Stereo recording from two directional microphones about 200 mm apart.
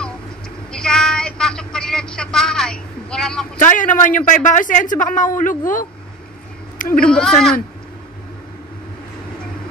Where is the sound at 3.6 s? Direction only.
40° left (ahead or behind).